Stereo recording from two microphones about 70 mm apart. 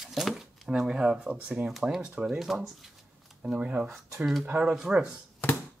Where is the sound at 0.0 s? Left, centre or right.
Centre.